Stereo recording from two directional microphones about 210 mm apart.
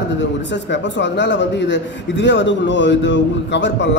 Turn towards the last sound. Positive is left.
turn(degrees=60)  # may be behind; listen again after turning